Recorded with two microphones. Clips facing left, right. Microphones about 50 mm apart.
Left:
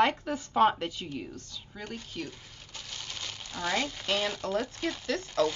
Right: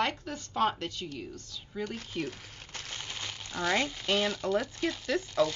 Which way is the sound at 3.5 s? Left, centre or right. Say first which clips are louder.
Right 2 dB; centre.